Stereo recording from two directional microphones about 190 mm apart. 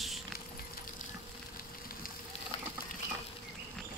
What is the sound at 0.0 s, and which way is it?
Vehicle, centre (ahead or behind).